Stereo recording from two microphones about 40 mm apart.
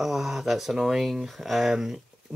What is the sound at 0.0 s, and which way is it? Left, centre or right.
Speech, centre.